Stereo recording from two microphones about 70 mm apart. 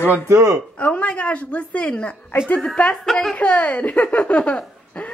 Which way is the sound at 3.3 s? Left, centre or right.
Centre.